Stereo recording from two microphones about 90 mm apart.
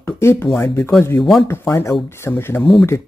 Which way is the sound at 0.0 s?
30° left (ahead or behind).